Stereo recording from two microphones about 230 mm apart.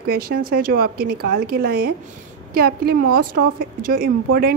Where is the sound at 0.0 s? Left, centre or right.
Right.